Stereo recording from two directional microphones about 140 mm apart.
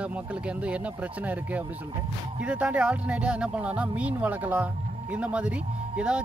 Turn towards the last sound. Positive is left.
turn(degrees=-10)  # may be behind; listen again after turning